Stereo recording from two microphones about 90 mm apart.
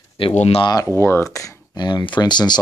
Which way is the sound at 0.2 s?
85° left.